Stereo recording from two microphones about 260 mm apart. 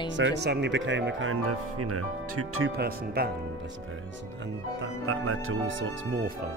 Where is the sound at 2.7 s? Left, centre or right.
Right.